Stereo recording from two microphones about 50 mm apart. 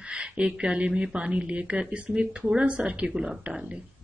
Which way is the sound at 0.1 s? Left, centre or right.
Right.